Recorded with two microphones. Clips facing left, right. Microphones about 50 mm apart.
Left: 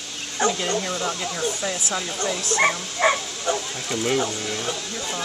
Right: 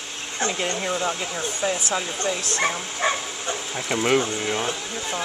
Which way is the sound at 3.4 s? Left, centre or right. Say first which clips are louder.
Left 5 dB; centre.